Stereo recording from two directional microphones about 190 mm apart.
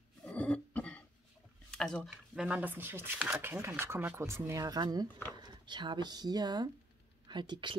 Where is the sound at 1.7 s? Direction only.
5° left (ahead or behind).